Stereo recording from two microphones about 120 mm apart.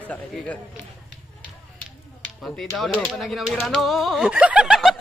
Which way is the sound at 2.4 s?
5° left (ahead or behind).